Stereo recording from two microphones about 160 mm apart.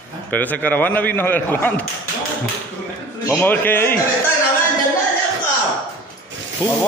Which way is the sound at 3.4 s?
10° left (ahead or behind).